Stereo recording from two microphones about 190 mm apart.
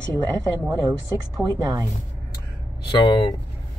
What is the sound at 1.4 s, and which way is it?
Speech, 20° right (ahead or behind).